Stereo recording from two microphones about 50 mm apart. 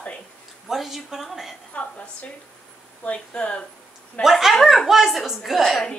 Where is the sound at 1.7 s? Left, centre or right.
Left.